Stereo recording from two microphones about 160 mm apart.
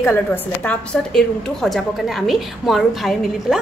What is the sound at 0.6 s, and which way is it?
A woman's voice, centre (ahead or behind).